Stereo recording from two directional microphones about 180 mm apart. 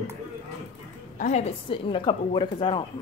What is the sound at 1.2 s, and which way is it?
A woman's voice, 40° left (ahead or behind).